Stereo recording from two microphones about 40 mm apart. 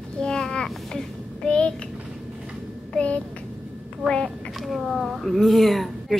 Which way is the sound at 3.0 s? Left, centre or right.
Left.